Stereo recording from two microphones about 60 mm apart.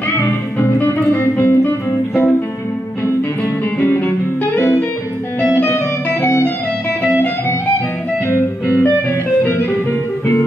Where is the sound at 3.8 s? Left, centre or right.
Left.